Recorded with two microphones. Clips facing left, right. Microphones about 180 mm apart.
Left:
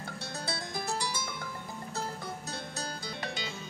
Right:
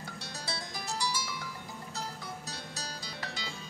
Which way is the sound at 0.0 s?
55° left (ahead or behind).